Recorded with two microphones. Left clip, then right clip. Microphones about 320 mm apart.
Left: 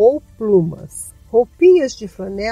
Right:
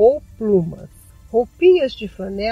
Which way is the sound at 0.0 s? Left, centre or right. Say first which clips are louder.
Left 1 dB; left.